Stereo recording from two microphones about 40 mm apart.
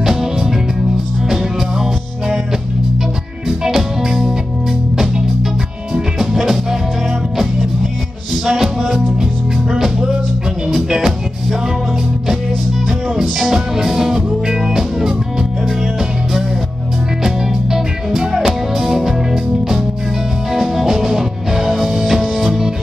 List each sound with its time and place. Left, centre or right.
0.0 s music: centre
3.4 s music: centre
6.1 s music: centre
8.5 s music: centre
13.2 s music: centre
17.2 s music: centre
20.5 s music: centre